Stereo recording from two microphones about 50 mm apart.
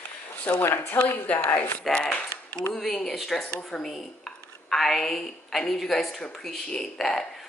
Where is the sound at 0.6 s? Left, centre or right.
Left.